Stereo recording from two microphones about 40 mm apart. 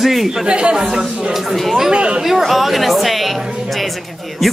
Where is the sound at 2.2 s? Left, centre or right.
Centre.